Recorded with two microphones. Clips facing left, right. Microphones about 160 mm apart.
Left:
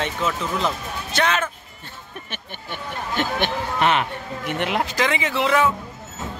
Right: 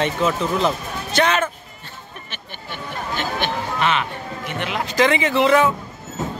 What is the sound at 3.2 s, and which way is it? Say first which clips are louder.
Speech: left 2 dB; 55° left (ahead or behind).